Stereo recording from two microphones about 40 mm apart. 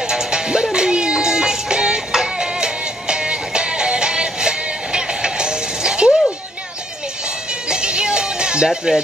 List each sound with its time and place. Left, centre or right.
0.0 s music: centre
7.6 s music: right